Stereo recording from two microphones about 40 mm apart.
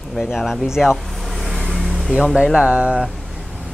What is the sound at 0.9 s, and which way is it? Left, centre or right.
Vehicle, centre.